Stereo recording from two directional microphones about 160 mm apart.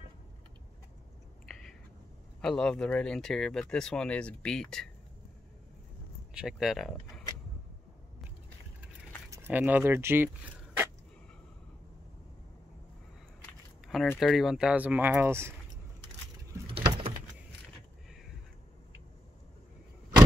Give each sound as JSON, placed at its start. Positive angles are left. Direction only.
{"t": 2.4, "sound": "speech", "side_deg": 5}
{"t": 6.3, "sound": "speech", "side_deg": -5}
{"t": 9.3, "sound": "speech", "side_deg": -15}
{"t": 14.2, "sound": "speech", "side_deg": 0}
{"t": 16.6, "sound": "vehicle", "side_deg": -35}